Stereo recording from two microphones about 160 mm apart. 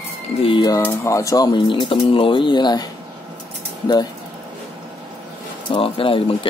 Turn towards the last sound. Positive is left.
turn(degrees=35)  # may be behind; listen again after turning